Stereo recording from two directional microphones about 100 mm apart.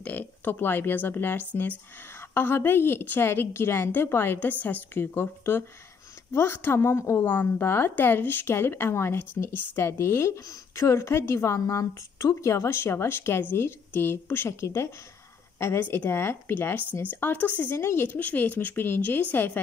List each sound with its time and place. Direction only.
0.0 s a woman's voice: 15° left (ahead or behind)